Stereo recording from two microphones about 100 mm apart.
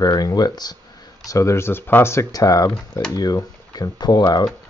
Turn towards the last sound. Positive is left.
turn(degrees=40)  # may be behind; listen again after turning